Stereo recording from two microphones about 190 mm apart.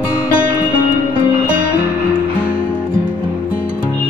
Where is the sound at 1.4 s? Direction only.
45° right (ahead or behind).